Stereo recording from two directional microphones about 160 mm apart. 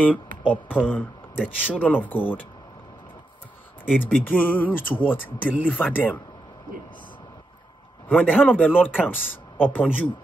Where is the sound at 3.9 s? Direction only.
10° left (ahead or behind).